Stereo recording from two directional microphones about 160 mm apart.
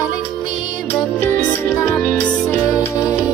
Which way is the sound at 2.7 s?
20° left (ahead or behind).